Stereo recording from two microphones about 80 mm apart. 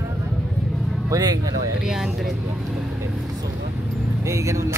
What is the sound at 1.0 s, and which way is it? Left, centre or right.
Speech, right.